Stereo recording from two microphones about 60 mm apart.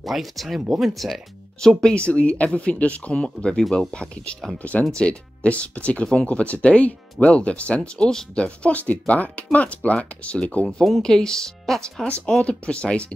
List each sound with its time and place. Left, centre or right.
0.0 s speech: centre
2.0 s speech: centre
8.5 s speech: left
10.6 s speech: centre